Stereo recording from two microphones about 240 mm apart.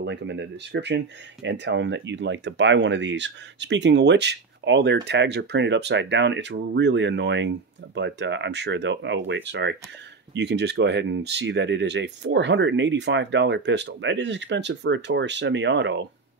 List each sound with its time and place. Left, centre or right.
0.0 s speech: right